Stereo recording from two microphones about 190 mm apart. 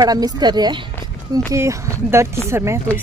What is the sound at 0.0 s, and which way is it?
Speech, 20° right (ahead or behind).